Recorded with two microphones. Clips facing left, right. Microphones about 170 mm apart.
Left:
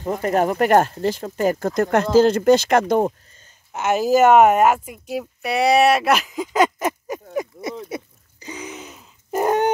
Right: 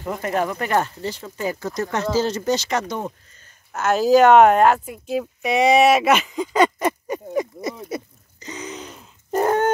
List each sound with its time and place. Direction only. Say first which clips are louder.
0.0 s speech: left 4 dB; 35° left (ahead or behind); by 3.1 s 55° left (ahead or behind)
3.7 s a woman's voice: right 2 dB; 10° left (ahead or behind)
7.3 s a sound: right 1 dB; 5° left (ahead or behind)
9.4 s chicken: even; 15° left (ahead or behind)